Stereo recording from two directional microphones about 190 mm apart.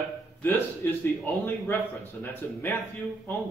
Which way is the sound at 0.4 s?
10° left (ahead or behind).